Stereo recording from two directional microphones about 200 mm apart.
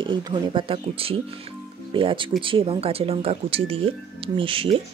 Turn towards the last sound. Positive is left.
turn(degrees=-25)  # may be behind; listen again after turning